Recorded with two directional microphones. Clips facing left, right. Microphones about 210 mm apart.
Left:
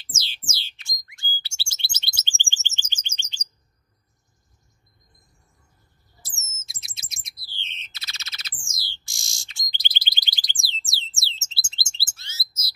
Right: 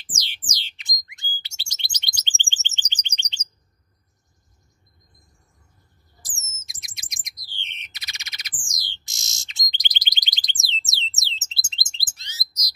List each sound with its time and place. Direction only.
0.0 s a sound: 15° right (ahead or behind)
1.0 s bird: 20° right (ahead or behind)
6.5 s bird: 15° right (ahead or behind)